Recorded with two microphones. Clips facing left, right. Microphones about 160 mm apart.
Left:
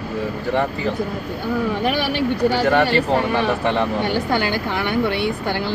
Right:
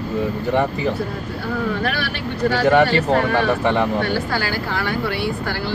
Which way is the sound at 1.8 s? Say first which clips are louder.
Left 5 dB; 15° left (ahead or behind).